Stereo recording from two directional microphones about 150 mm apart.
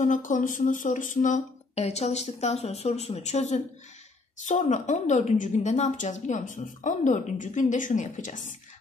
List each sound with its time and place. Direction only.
0.0 s a woman's voice: 60° left (ahead or behind)